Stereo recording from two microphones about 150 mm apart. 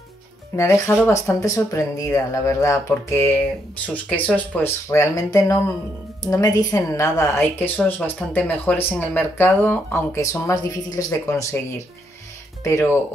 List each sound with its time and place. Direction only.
0.6 s speech: 15° left (ahead or behind)
12.6 s speech: 20° left (ahead or behind)